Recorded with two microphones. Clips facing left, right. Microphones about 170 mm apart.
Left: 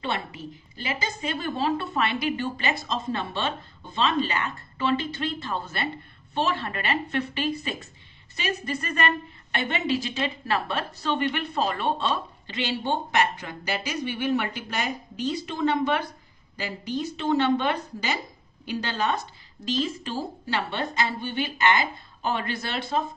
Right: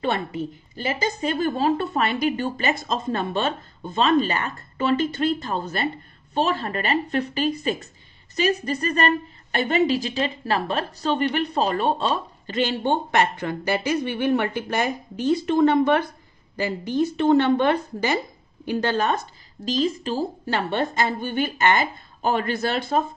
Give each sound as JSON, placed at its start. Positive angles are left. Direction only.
{"t": 0.0, "sound": "a woman's voice", "side_deg": -50}